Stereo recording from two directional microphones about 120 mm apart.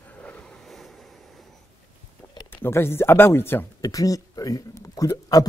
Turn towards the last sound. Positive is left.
turn(degrees=30)  # may be behind; listen again after turning